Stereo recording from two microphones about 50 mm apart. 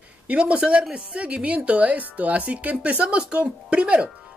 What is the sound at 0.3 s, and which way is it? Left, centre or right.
Speech, right.